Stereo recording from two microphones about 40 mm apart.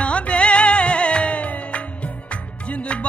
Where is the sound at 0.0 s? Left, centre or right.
Left.